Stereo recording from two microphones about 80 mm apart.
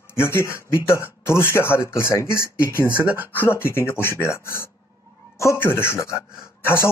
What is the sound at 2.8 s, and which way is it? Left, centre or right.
Speech, right.